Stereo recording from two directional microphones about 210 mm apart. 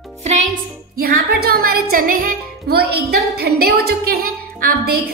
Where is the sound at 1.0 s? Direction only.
45° right (ahead or behind).